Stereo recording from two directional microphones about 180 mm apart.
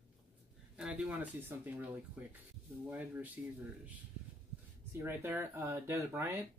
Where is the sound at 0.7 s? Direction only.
5° right (ahead or behind).